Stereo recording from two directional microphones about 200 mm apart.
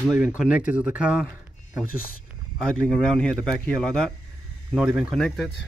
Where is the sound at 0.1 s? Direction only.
5° right (ahead or behind).